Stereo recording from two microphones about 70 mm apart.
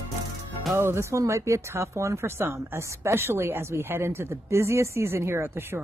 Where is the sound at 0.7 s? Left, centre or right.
Right.